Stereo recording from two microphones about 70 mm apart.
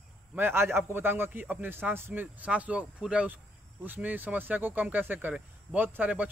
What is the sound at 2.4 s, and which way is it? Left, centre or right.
Speech, centre.